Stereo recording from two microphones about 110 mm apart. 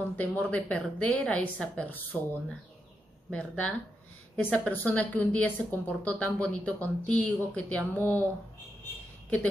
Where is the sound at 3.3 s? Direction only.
10° left (ahead or behind).